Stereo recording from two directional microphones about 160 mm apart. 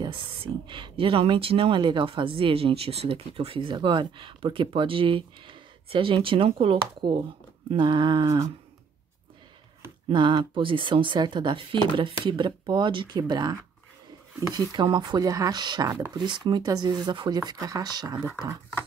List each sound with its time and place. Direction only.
0.0 s speech: 30° right (ahead or behind)
10.0 s speech: 30° right (ahead or behind)